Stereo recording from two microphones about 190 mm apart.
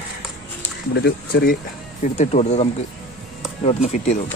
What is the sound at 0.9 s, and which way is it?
Speech, 60° left (ahead or behind).